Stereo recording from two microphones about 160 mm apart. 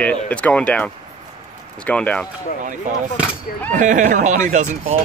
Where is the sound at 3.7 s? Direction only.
50° right (ahead or behind).